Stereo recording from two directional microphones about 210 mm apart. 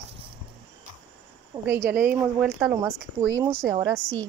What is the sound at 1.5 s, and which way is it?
Speech, 10° right (ahead or behind).